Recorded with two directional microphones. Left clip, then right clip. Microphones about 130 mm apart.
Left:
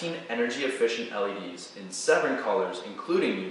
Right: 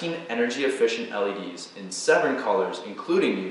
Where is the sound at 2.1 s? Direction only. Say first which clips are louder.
Right 3 dB; 5° right (ahead or behind).